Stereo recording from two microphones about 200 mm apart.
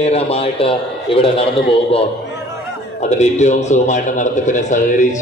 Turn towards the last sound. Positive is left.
turn(degrees=40)  # may be behind; listen again after turning